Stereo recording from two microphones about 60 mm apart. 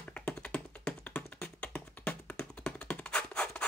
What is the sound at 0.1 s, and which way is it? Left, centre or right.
Tap, centre.